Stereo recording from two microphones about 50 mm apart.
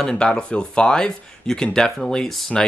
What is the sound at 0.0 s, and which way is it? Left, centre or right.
Speech, centre.